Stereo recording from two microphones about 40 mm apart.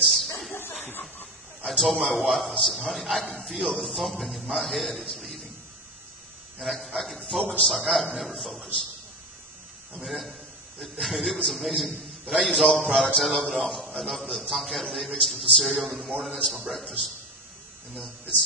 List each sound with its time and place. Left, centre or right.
0.0 s chuckle: centre
0.5 s a sound: left
1.7 s a man's voice: centre
5.1 s a sound: centre
6.6 s a man's voice: centre
9.9 s a man's voice: centre